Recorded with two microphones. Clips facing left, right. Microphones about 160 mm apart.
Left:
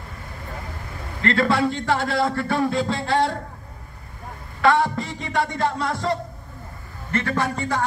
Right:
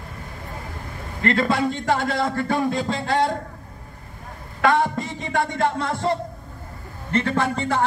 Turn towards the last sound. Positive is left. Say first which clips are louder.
# right 1 dB
turn(degrees=-25)  # may be behind; listen again after turning